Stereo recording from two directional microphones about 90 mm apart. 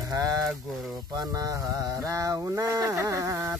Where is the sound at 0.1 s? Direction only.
40° right (ahead or behind).